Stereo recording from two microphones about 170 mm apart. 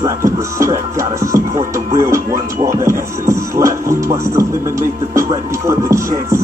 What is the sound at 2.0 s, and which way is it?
Speech, 20° right (ahead or behind).